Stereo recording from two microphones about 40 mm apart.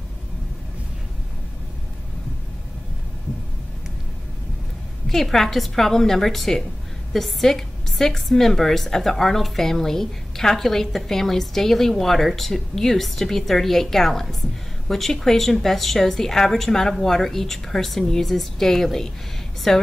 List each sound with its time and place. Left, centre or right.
5.0 s a woman's voice: centre